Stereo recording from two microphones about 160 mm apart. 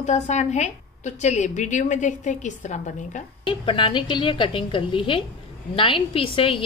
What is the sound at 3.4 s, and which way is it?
A woman's voice, 30° left (ahead or behind).